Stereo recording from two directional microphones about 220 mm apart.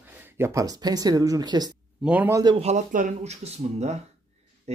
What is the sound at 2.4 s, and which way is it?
Speech, 25° right (ahead or behind).